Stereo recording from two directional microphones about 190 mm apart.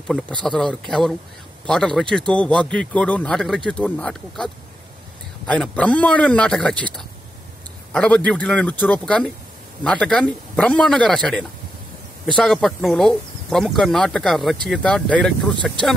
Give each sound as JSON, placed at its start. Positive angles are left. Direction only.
{"t": 0.4, "sound": "speech", "side_deg": 5}
{"t": 5.5, "sound": "a man's voice", "side_deg": 5}